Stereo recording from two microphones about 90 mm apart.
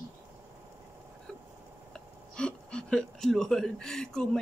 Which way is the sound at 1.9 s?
10° left (ahead or behind).